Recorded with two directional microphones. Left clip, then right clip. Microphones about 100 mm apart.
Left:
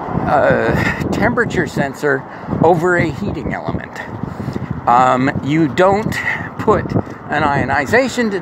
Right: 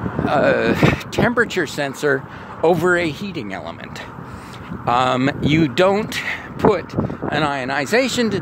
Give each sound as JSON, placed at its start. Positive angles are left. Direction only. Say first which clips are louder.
{"t": 0.3, "sound": "speech", "louder": "left 3 dB", "side_deg": -45}
{"t": 4.8, "sound": "speech", "louder": "left 5 dB", "side_deg": -45}